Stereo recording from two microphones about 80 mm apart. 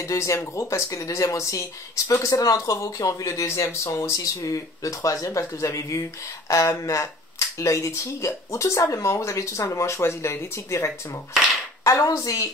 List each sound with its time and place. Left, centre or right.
0.0 s speech: left